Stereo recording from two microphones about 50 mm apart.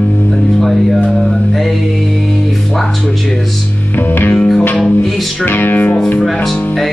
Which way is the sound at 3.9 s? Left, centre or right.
Left.